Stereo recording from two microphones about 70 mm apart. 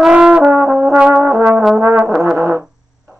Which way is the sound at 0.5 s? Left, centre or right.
Right.